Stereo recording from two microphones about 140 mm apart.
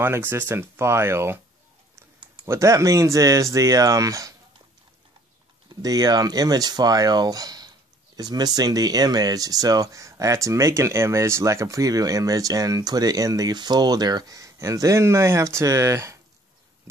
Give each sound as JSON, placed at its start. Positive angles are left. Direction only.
{"t": 0.0, "sound": "speech", "side_deg": -15}
{"t": 2.4, "sound": "speech", "side_deg": -20}
{"t": 5.8, "sound": "speech", "side_deg": -25}
{"t": 16.9, "sound": "chop", "side_deg": -20}